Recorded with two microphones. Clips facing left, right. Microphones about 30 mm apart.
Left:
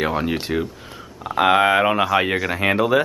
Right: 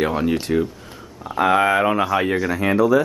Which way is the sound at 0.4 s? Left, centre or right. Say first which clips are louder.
Right 3 dB; centre.